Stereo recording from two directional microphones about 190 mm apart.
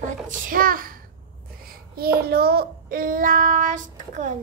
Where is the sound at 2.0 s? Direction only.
55° right (ahead or behind).